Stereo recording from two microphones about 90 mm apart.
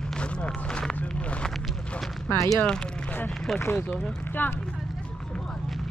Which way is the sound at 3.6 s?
20° left (ahead or behind).